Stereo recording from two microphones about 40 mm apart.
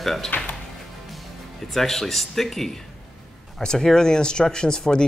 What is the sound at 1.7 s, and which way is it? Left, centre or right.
Speech, centre.